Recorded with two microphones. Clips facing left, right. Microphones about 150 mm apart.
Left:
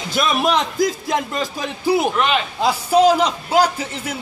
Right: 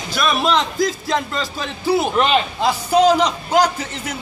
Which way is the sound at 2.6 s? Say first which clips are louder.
Left 2 dB; 10° left (ahead or behind).